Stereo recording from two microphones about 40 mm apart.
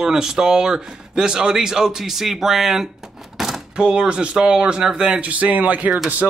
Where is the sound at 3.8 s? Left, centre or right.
Right.